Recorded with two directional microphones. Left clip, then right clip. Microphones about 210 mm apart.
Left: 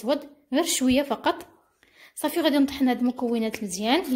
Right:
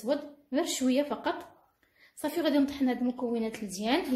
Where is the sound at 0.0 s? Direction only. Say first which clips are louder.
Left 5 dB; 40° left (ahead or behind).